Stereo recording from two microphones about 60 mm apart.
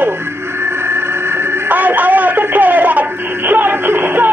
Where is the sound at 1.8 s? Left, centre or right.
Right.